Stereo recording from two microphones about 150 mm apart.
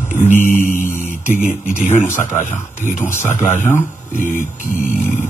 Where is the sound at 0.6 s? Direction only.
55° left (ahead or behind).